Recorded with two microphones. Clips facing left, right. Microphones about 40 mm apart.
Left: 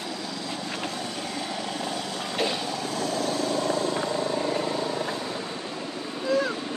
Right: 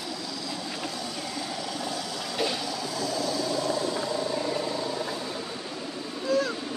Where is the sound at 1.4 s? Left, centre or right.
Left.